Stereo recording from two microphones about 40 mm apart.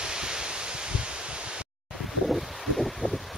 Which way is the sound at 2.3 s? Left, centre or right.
Centre.